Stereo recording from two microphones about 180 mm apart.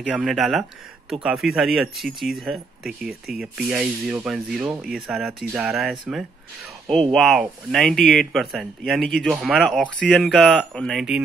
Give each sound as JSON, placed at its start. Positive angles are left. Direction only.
{"t": 0.0, "sound": "speech", "side_deg": -5}